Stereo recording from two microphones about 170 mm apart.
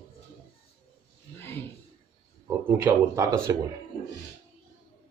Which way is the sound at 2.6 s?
15° right (ahead or behind).